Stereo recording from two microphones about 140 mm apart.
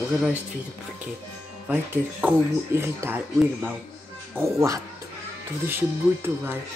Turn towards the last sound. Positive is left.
turn(degrees=-15)  # may be behind; listen again after turning